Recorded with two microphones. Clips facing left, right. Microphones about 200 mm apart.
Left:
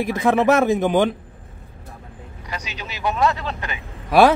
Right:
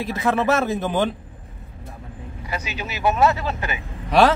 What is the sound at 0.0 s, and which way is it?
A man's voice, 15° left (ahead or behind).